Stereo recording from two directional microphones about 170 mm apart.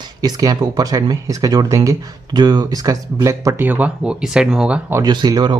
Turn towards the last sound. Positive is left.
turn(degrees=-25)  # may be behind; listen again after turning